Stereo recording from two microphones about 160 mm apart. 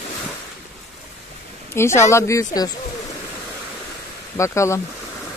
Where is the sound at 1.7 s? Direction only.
15° left (ahead or behind).